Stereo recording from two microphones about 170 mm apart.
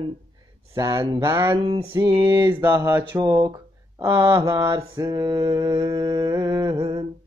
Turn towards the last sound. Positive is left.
turn(degrees=-20)  # may be behind; listen again after turning